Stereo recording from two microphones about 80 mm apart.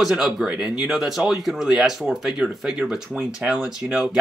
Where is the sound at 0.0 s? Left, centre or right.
Centre.